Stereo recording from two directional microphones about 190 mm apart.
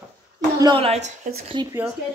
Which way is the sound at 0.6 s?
25° right (ahead or behind).